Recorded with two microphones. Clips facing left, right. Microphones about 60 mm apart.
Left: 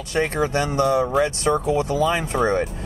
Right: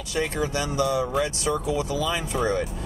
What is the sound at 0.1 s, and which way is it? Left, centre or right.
Speech, left.